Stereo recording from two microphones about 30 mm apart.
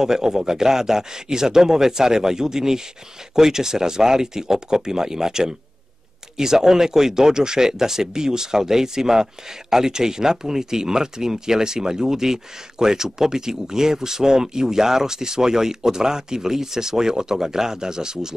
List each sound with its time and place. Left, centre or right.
0.0 s speech: centre